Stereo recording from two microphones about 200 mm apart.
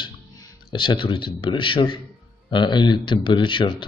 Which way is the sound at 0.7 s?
25° left (ahead or behind).